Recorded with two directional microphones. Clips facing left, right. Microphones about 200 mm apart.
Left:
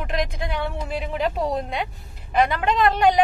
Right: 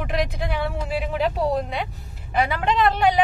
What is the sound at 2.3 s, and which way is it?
Speech, 5° right (ahead or behind).